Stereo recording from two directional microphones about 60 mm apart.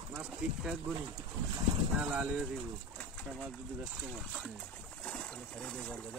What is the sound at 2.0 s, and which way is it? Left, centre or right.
Speech, centre.